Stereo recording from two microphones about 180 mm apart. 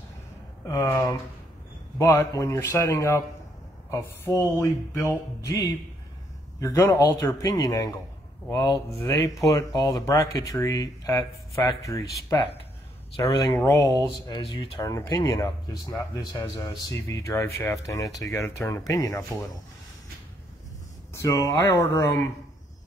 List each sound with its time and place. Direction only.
0.7 s speech: 15° left (ahead or behind)
14.2 s speech: 25° left (ahead or behind)
21.1 s speech: 15° left (ahead or behind)